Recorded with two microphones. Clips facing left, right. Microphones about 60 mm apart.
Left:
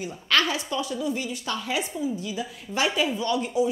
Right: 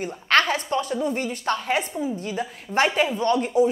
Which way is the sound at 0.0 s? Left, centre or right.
Right.